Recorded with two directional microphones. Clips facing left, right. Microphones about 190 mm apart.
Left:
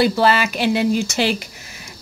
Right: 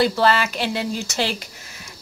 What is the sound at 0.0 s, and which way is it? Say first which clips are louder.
Speech: left 2 dB; 10° left (ahead or behind).